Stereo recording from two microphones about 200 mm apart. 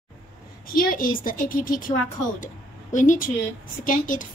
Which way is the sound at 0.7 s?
45° left (ahead or behind).